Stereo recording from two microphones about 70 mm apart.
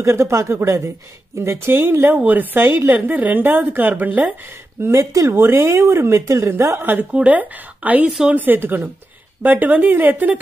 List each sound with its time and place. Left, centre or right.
0.0 s speech: right
4.9 s speech: right
5.3 s a woman's voice: right
6.8 s speech: right